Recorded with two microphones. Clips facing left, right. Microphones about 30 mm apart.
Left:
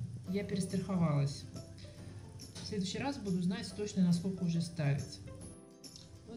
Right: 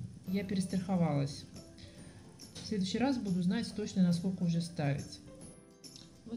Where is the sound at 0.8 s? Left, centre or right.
Centre.